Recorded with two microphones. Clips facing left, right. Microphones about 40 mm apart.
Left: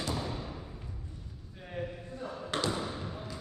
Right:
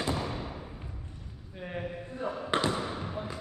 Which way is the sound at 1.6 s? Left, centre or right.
Right.